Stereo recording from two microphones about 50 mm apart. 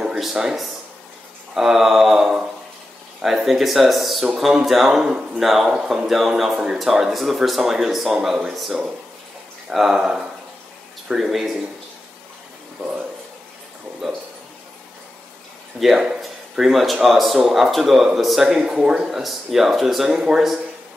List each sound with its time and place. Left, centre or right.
0.0 s speech: centre
14.0 s speech: centre
15.8 s speech: centre
20.2 s speech: centre